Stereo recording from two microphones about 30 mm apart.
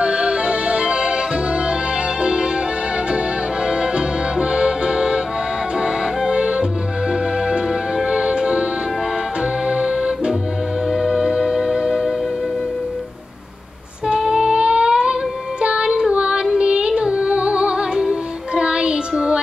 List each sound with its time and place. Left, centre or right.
0.0 s music: right
3.6 s accordion: right
5.8 s music: right
14.0 s music: right
18.5 s child singing: right